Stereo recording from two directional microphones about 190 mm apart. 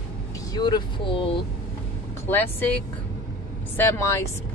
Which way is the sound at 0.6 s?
25° left (ahead or behind).